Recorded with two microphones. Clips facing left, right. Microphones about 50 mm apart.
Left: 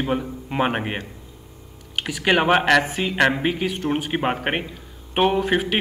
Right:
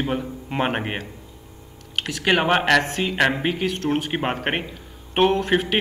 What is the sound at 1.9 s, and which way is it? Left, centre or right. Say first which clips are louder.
Speech: left 1 dB; centre.